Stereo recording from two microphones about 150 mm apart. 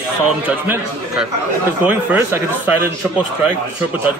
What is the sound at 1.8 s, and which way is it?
Speech, 10° right (ahead or behind).